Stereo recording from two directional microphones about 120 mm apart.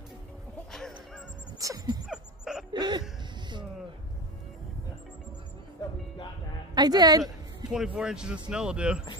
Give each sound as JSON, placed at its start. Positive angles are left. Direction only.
{"t": 0.7, "sound": "music", "side_deg": 5}
{"t": 1.6, "sound": "sneeze", "side_deg": -30}
{"t": 2.0, "sound": "a sound", "side_deg": -5}
{"t": 2.7, "sound": "a sound", "side_deg": -35}
{"t": 6.7, "sound": "a woman's voice", "side_deg": -35}
{"t": 7.7, "sound": "speech", "side_deg": -5}